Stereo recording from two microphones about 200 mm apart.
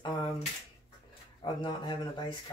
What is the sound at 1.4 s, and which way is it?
Speech, 20° left (ahead or behind).